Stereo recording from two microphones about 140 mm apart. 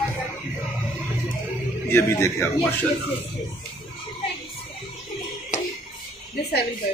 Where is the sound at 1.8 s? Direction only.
20° left (ahead or behind).